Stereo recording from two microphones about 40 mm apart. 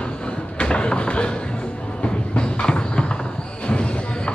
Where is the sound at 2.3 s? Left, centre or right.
Left.